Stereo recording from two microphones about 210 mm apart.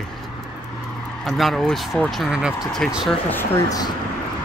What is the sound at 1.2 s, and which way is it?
Speech, centre (ahead or behind).